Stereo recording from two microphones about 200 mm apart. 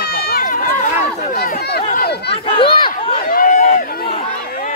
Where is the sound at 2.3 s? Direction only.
30° left (ahead or behind).